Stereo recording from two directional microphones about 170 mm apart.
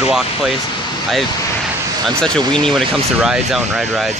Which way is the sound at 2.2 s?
5° left (ahead or behind).